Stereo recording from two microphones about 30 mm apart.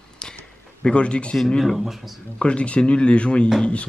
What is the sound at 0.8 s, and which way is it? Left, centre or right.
Speech, left.